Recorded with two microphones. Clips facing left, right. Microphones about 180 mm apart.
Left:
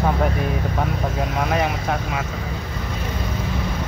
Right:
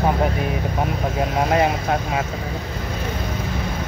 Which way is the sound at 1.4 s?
25° right (ahead or behind).